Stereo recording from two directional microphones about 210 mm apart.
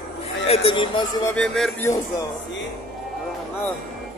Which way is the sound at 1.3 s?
5° left (ahead or behind).